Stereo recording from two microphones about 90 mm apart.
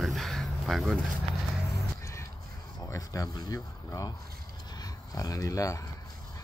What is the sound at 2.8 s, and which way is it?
Speech, 40° left (ahead or behind).